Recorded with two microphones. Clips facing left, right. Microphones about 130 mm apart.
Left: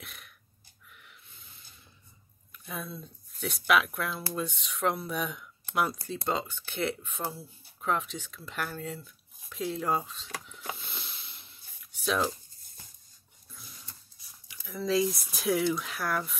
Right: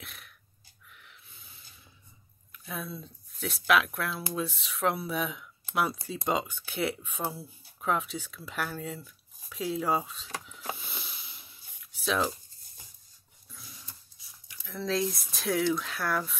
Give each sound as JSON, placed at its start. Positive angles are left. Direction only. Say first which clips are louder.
{"t": 0.0, "sound": "a sound", "louder": "even", "side_deg": 0}
{"t": 2.5, "sound": "speech", "louder": "right 1 dB", "side_deg": 0}
{"t": 6.1, "sound": "speech", "louder": "right 2 dB", "side_deg": -10}
{"t": 10.8, "sound": "a sound", "louder": "right 1 dB", "side_deg": -5}
{"t": 13.5, "sound": "printer", "louder": "right 1 dB", "side_deg": 0}
{"t": 14.5, "sound": "speech", "louder": "left 3 dB", "side_deg": 5}